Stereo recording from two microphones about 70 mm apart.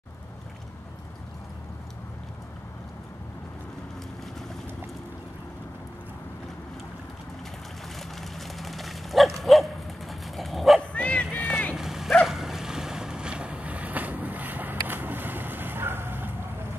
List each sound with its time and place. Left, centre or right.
8.2 s dog: centre
10.8 s bow-wow: centre
11.2 s music: centre
11.7 s dog: centre
12.1 s boat: centre; by 16.3 s right